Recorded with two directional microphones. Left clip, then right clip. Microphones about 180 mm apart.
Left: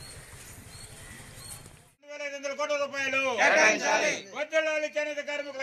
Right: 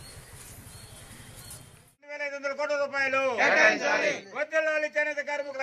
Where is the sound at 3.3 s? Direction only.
45° right (ahead or behind).